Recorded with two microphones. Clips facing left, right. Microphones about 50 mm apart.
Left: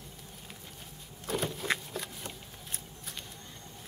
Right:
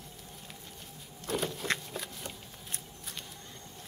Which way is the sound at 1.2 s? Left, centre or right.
Centre.